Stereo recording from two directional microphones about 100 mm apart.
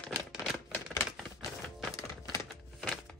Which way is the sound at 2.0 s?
35° left (ahead or behind).